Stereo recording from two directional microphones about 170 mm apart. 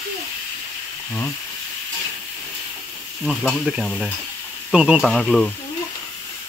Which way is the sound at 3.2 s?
5° left (ahead or behind).